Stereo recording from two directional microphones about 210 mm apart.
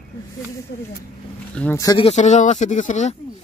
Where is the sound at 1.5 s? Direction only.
10° left (ahead or behind).